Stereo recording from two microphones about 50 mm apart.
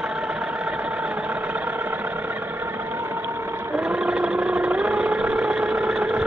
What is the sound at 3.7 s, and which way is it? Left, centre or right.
Vehicle, right.